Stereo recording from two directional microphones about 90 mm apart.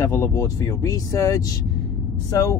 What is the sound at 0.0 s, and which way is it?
Speech, 30° left (ahead or behind).